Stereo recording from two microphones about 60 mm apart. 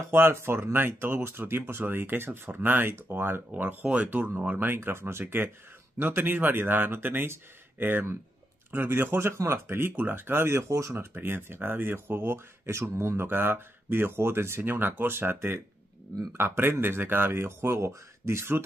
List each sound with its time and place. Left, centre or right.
0.1 s speech: right
3.8 s speech: centre
4.6 s speech: right
11.1 s speech: right